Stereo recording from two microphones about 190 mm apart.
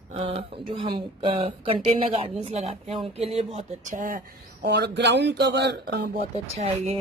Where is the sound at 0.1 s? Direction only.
30° right (ahead or behind); by 6.2 s 60° right (ahead or behind).